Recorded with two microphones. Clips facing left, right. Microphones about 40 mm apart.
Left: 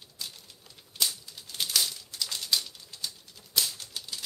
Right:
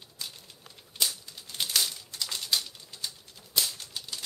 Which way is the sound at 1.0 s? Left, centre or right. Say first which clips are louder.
Even; centre.